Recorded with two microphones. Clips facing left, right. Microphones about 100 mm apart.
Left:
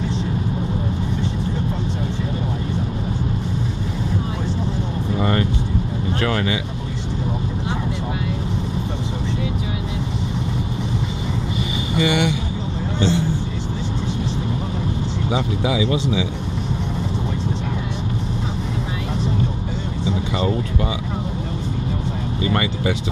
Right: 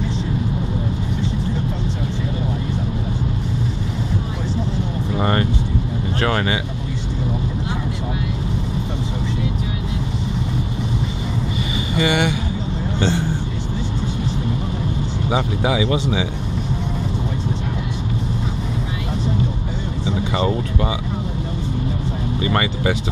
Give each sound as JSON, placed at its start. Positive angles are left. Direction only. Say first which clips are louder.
{"t": 5.2, "sound": "vehicle", "louder": "right 1 dB", "side_deg": -45}
{"t": 6.2, "sound": "speech", "louder": "right 2 dB", "side_deg": -50}
{"t": 12.0, "sound": "vehicle", "louder": "even", "side_deg": -45}
{"t": 15.3, "sound": "speech", "louder": "right 2 dB", "side_deg": -50}
{"t": 22.5, "sound": "speech", "louder": "right 1 dB", "side_deg": -60}